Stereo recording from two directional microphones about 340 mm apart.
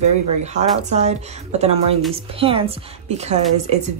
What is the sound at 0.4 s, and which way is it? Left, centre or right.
Speech, centre.